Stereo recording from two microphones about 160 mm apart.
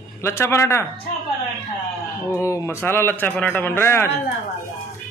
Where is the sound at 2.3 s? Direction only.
20° left (ahead or behind).